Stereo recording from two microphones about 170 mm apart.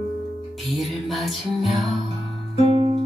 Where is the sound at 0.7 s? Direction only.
Centre (ahead or behind).